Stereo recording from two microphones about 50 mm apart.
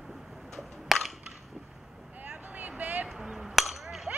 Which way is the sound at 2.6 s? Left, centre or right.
Right.